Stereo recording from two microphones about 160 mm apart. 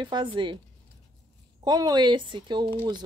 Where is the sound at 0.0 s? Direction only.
30° right (ahead or behind).